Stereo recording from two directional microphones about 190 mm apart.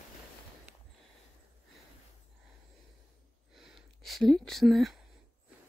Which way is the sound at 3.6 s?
Centre (ahead or behind).